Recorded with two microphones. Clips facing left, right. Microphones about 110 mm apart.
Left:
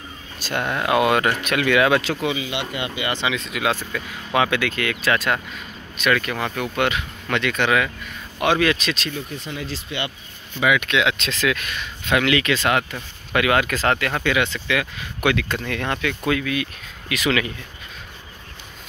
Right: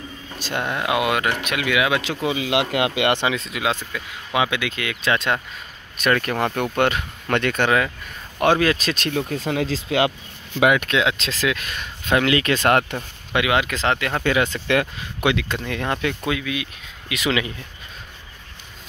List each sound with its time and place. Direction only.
0.4 s speech: 20° right (ahead or behind)
0.7 s speech: 10° right (ahead or behind)
2.3 s speech: 75° right (ahead or behind)
3.3 s speech: 35° right (ahead or behind)
3.6 s speech: 15° right (ahead or behind)
5.9 s speech: 45° right (ahead or behind)
9.0 s speech: 70° right (ahead or behind); by 10.1 s 90° right
10.6 s speech: 45° right (ahead or behind)
12.5 s speech: 50° right (ahead or behind)
13.3 s speech: 20° right (ahead or behind)
14.2 s speech: 40° right (ahead or behind)
15.2 s speech: 15° right (ahead or behind)
17.1 s speech: 25° right (ahead or behind)